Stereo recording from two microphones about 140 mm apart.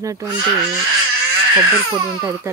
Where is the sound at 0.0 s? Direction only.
25° right (ahead or behind).